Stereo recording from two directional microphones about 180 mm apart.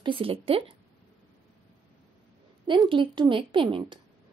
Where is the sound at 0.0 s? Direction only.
30° right (ahead or behind).